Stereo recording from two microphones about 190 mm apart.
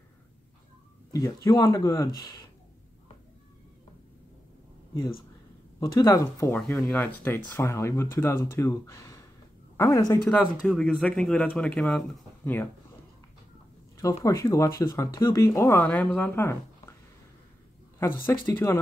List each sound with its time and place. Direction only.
1.1 s speech: 20° left (ahead or behind)
5.8 s speech: 20° left (ahead or behind)
13.9 s speech: 20° left (ahead or behind)
17.9 s speech: 10° left (ahead or behind)